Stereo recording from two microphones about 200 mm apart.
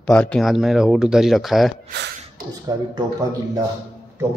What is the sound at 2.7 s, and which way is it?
Speech, 20° right (ahead or behind).